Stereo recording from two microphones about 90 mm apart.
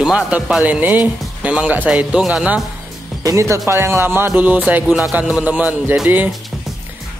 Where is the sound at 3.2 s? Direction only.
35° right (ahead or behind).